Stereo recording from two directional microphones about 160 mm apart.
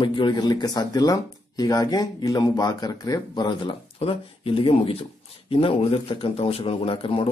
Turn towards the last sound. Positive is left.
turn(degrees=35)  # may be behind; listen again after turning